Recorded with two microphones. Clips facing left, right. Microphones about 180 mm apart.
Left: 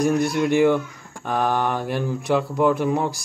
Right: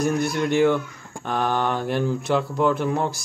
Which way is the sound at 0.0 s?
Centre (ahead or behind).